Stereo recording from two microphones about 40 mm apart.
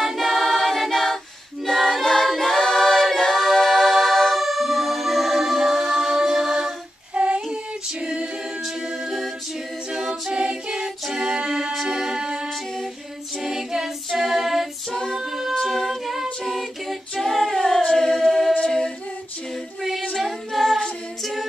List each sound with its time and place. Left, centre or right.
0.0 s a capella: centre
7.2 s child singing: right
8.0 s a capella: centre
9.9 s a capella: centre
10.3 s a capella: centre
11.7 s music: centre
13.4 s a capella: centre
14.2 s music: centre
15.6 s a capella: centre
19.8 s music: centre
20.2 s a capella: centre